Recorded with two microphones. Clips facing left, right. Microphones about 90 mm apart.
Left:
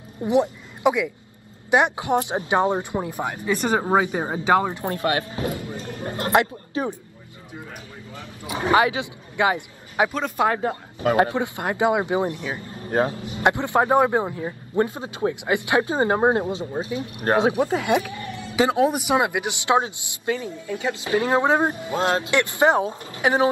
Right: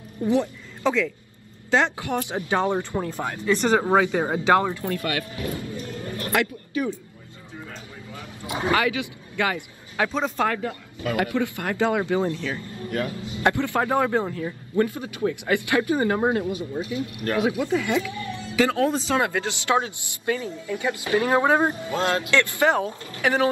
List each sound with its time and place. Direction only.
0.2 s speech: 20° left (ahead or behind)
8.1 s speech: 25° left (ahead or behind)
10.5 s speech: 30° left (ahead or behind)
13.3 s speech: 20° left (ahead or behind)